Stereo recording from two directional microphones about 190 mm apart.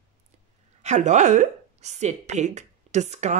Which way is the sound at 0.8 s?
40° right (ahead or behind).